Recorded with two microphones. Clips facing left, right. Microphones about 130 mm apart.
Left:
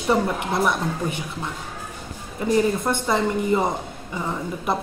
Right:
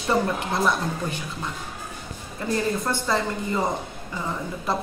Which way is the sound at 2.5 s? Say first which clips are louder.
Left 5 dB; 20° left (ahead or behind).